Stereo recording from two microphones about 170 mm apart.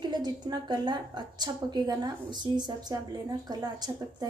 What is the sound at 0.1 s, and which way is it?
A woman's voice, 25° right (ahead or behind).